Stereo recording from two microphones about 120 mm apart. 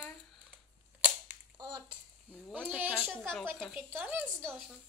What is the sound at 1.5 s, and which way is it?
Speech, 35° right (ahead or behind).